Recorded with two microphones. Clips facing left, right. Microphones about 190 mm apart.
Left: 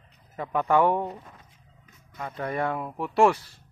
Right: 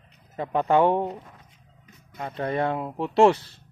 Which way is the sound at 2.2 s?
25° right (ahead or behind).